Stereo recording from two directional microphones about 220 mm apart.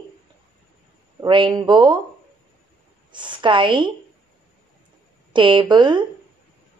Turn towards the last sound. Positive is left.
turn(degrees=-20)  # may be behind; listen again after turning